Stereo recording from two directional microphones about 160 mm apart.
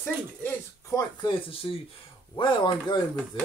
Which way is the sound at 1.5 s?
35° left (ahead or behind).